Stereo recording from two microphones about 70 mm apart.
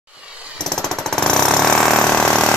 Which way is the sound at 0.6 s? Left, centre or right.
Centre.